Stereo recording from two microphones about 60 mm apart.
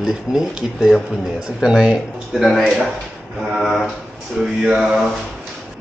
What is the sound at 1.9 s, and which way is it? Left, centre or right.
Speech, centre.